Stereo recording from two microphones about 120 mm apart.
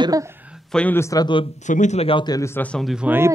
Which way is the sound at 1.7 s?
80° left.